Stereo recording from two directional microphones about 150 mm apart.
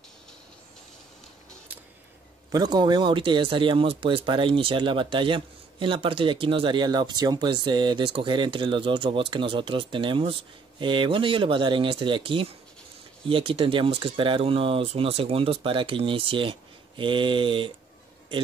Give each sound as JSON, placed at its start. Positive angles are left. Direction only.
{"t": 2.5, "sound": "speech", "side_deg": -25}